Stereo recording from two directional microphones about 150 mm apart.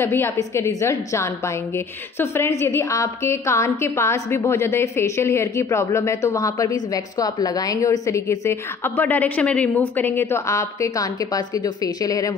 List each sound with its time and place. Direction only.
0.0 s a woman's voice: 15° left (ahead or behind)